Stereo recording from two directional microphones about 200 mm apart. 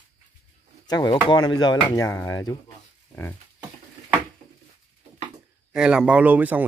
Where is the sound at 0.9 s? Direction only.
20° left (ahead or behind).